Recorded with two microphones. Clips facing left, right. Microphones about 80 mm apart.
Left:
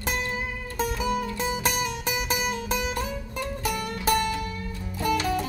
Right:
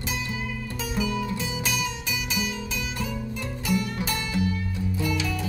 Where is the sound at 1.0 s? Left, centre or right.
Left.